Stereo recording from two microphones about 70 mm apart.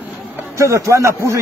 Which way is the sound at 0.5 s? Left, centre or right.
Right.